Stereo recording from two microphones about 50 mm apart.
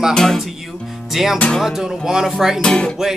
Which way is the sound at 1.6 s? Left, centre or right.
Centre.